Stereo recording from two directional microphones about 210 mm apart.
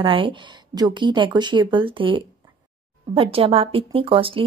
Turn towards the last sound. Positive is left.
turn(degrees=-25)  # may be behind; listen again after turning